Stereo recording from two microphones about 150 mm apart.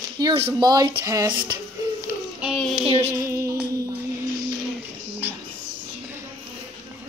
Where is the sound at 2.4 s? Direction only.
5° left (ahead or behind).